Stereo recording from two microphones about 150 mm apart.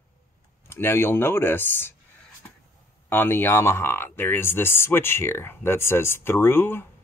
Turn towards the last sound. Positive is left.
turn(degrees=15)  # may be behind; listen again after turning